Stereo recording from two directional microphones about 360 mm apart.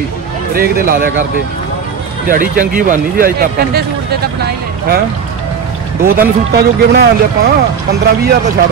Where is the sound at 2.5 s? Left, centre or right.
Right.